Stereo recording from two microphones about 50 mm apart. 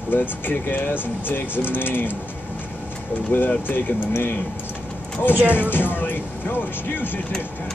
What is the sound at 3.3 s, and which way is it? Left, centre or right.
Speech, left.